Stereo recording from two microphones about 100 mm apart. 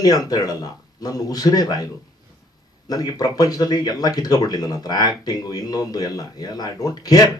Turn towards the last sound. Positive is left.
turn(degrees=40)  # may be behind; listen again after turning